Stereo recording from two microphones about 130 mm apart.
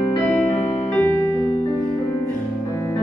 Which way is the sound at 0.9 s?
15° left (ahead or behind).